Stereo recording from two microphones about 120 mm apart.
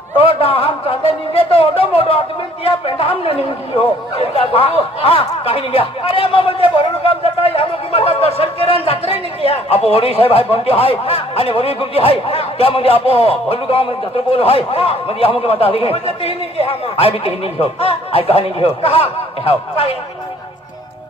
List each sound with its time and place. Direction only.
0.2 s a man's voice: 50° left (ahead or behind)
8.8 s a sound: 50° left (ahead or behind)
9.5 s a man's voice: 55° left (ahead or behind)